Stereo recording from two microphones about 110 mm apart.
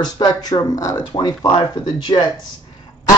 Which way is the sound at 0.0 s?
35° left (ahead or behind).